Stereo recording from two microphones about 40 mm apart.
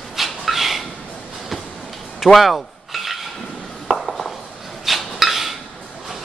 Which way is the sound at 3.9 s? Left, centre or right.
Centre.